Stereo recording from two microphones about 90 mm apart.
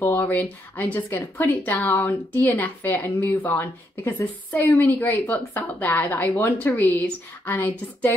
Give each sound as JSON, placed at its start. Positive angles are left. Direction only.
{"t": 0.2, "sound": "a woman's voice", "side_deg": 20}